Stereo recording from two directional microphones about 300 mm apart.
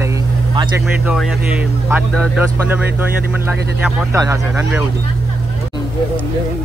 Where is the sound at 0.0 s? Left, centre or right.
Centre.